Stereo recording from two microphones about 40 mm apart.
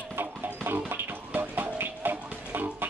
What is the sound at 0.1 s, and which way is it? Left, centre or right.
Music, right.